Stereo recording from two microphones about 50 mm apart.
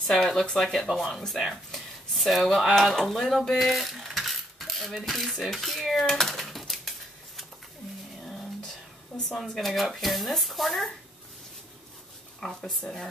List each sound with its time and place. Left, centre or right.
0.0 s speech: centre
6.0 s a sound: centre
9.3 s speech: centre
12.4 s speech: centre